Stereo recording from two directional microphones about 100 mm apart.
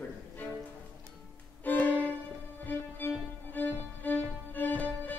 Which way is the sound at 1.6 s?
15° left (ahead or behind).